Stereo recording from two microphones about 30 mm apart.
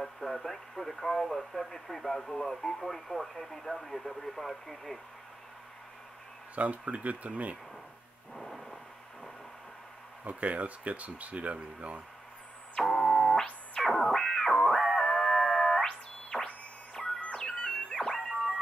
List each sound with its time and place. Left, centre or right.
0.0 s speech: centre
6.5 s speech: right
8.4 s thunder: centre
10.2 s speech: right
12.8 s keyboard: centre
13.8 s music: centre
14.1 s music: centre
14.5 s music: centre
15.8 s chirp tone: centre
17.0 s music: left
17.9 s a sound: centre